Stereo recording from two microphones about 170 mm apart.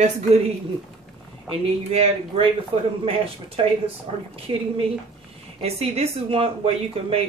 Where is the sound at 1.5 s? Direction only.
35° right (ahead or behind).